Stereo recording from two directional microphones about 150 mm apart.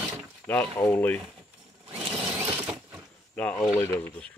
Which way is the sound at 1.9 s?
40° right (ahead or behind).